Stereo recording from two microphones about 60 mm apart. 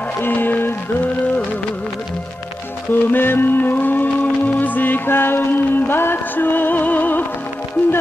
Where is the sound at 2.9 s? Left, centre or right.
Left.